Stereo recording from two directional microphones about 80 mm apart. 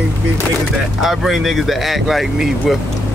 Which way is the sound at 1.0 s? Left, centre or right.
Centre.